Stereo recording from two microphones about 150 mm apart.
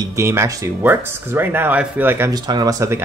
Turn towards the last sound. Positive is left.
turn(degrees=-20)  # may be behind; listen again after turning